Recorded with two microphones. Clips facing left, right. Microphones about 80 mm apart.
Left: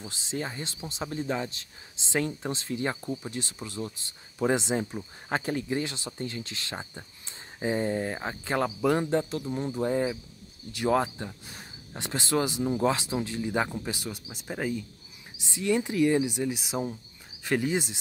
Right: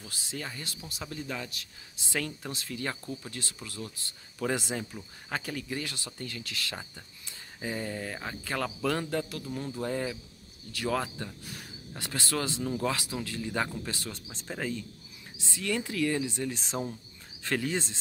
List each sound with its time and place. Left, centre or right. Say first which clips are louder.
0.0 s speech: left 5 dB; left